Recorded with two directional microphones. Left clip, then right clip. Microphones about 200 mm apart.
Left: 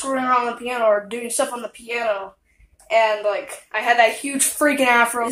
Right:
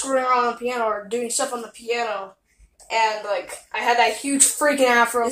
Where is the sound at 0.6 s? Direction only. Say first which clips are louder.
Left 5 dB; 35° left (ahead or behind).